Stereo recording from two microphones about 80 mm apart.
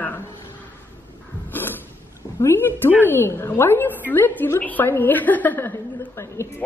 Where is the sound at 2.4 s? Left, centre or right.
Left.